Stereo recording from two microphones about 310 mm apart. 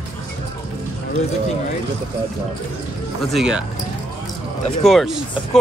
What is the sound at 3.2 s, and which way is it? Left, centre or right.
Speech, centre.